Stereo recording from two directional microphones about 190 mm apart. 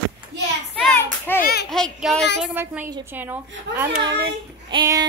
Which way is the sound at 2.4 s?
10° right (ahead or behind).